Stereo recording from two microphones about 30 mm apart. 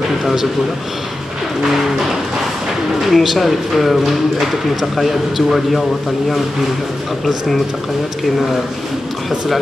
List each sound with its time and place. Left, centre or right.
0.2 s a man's voice: centre
3.1 s speech: centre